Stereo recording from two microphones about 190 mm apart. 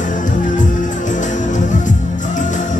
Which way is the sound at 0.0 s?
40° left (ahead or behind).